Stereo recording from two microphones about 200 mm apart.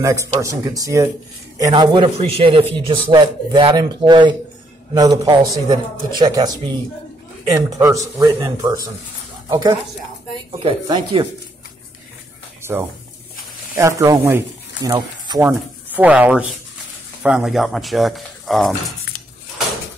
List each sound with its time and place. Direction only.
0.0 s speech: 15° right (ahead or behind)
12.6 s speech: 10° right (ahead or behind)
15.4 s speech: 10° right (ahead or behind)